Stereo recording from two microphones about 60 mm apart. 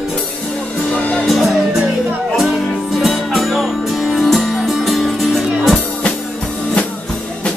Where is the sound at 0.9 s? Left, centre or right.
Left.